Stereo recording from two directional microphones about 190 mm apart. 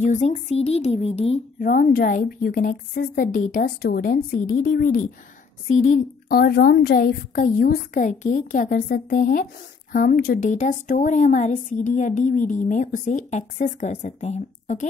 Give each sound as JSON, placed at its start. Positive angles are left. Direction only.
{"t": 0.0, "sound": "a woman's voice", "side_deg": 40}
{"t": 1.6, "sound": "a woman's voice", "side_deg": 50}